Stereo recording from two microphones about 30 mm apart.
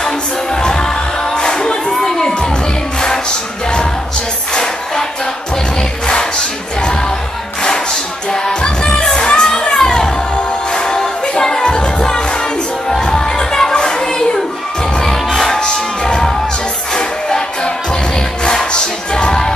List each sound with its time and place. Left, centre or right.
0.6 s music: left
2.0 s crowd: centre
8.3 s music: left
13.7 s a sound: left
15.0 s music: centre
18.4 s music: left